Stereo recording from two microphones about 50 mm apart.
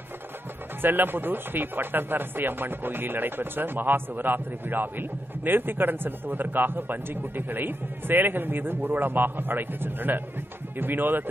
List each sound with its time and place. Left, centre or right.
0.8 s speech: right